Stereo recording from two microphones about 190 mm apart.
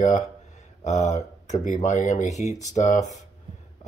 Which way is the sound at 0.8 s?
40° left (ahead or behind).